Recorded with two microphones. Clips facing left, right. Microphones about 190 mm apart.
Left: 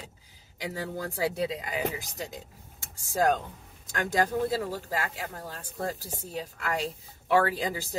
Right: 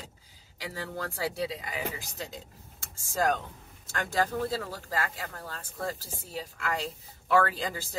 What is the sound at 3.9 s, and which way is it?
Speech, 15° left (ahead or behind).